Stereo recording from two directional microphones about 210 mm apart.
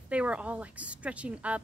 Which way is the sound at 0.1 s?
5° right (ahead or behind).